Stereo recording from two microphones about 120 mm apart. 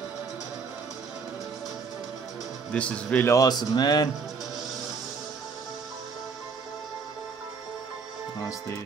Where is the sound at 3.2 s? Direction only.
30° left (ahead or behind).